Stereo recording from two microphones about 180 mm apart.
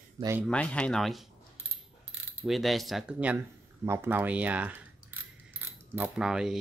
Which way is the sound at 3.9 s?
10° right (ahead or behind).